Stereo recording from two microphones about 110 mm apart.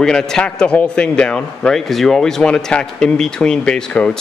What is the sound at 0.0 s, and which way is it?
A man's voice, 5° left (ahead or behind).